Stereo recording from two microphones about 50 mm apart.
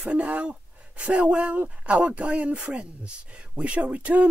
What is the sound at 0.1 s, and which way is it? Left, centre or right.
Speech, right.